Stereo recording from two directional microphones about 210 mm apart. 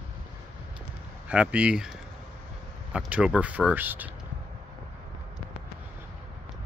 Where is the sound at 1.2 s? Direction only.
5° right (ahead or behind).